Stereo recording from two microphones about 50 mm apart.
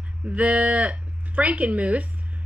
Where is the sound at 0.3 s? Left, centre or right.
Right.